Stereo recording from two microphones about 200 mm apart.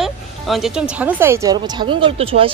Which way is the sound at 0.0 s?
Centre (ahead or behind).